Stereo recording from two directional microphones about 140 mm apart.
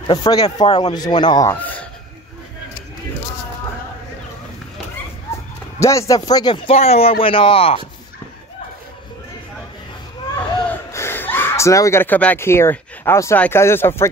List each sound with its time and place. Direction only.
0.1 s speech: 30° left (ahead or behind)
1.5 s a sound: 10° left (ahead or behind)
5.8 s a man's voice: 20° left (ahead or behind); by 7.8 s 45° left (ahead or behind)
10.9 s speech: 20° left (ahead or behind)